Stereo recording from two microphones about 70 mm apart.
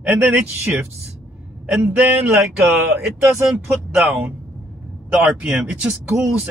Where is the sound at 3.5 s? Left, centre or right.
Centre.